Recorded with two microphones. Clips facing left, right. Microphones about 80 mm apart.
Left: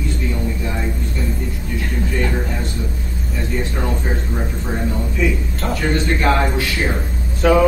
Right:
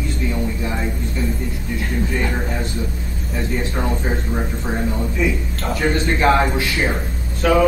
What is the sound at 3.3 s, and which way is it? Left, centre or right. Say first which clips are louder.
Speech: right 1 dB; centre.